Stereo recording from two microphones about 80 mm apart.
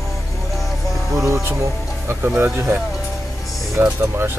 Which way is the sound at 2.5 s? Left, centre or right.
Right.